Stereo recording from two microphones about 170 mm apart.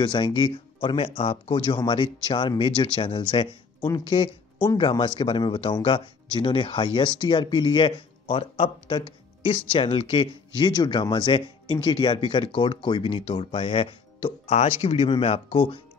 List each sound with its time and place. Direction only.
0.0 s speech: 25° left (ahead or behind)